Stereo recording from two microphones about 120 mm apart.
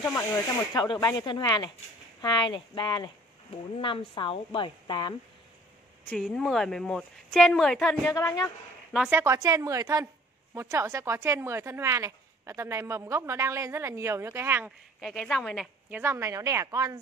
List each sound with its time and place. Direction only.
0.7 s speech: 30° left (ahead or behind)
3.7 s speech: 45° left (ahead or behind)
6.0 s a woman's voice: 5° left (ahead or behind)
8.1 s a woman's voice: 30° left (ahead or behind)
9.1 s speech: 25° right (ahead or behind)
15.0 s a woman's voice: centre (ahead or behind)
15.9 s speech: 20° right (ahead or behind)